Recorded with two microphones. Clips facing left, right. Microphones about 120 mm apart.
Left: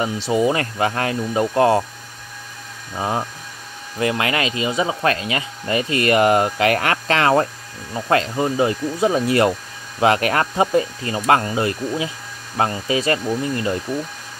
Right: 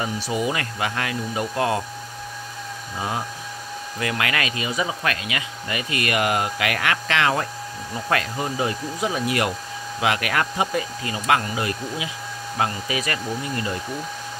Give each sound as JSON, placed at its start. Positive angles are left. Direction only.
{"t": 0.0, "sound": "speech", "side_deg": 25}
{"t": 3.0, "sound": "speech", "side_deg": 30}
{"t": 7.9, "sound": "speech", "side_deg": 25}